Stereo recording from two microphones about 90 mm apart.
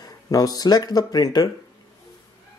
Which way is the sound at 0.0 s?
45° left (ahead or behind).